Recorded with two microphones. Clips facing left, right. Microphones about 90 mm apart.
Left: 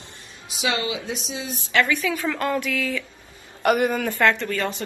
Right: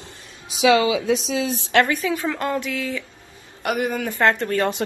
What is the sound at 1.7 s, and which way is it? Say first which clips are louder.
Speech: right 3 dB; 55° right (ahead or behind).